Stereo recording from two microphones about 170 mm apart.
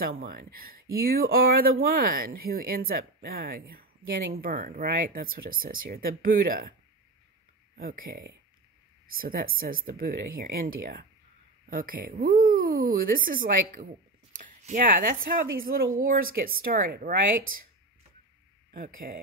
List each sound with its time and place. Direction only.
0.0 s speech: 60° right (ahead or behind)
7.7 s speech: 60° right (ahead or behind)
18.7 s speech: 60° right (ahead or behind)